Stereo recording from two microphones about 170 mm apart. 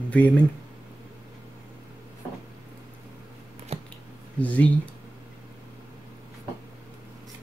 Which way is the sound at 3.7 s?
40° right (ahead or behind).